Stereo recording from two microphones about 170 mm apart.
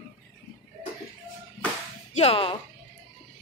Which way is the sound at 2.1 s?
35° left (ahead or behind).